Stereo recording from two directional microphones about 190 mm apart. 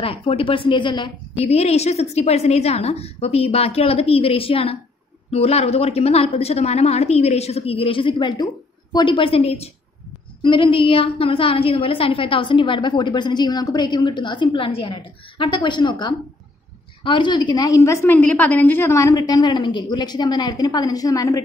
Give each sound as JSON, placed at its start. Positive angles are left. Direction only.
{"t": 0.0, "sound": "a woman's voice", "side_deg": 30}